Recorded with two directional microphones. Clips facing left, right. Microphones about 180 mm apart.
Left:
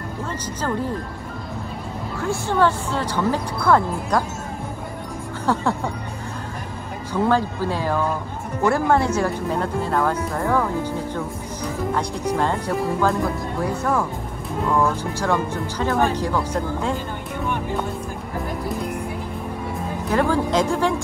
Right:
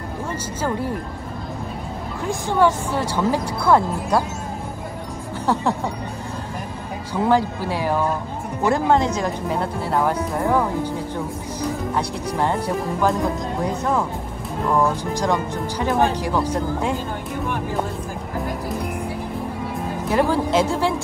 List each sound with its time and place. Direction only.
0.6 s speech: 10° right (ahead or behind)
2.2 s speech: 15° right (ahead or behind)
5.5 s speech: 15° right (ahead or behind)
7.2 s speech: 15° right (ahead or behind)
12.4 s speech: 15° right (ahead or behind)
20.1 s speech: 15° right (ahead or behind)